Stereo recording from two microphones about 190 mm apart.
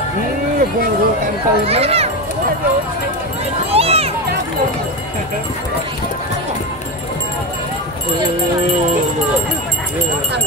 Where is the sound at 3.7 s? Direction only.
30° right (ahead or behind).